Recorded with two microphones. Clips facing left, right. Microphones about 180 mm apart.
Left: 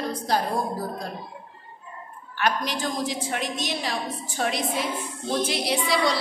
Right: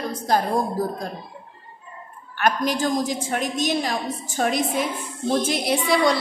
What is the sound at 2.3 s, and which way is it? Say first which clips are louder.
A woman's voice: right 4 dB; 50° right (ahead or behind).